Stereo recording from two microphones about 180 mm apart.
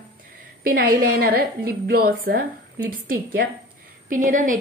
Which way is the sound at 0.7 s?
55° right (ahead or behind).